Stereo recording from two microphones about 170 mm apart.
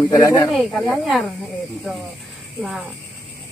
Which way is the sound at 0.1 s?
20° left (ahead or behind).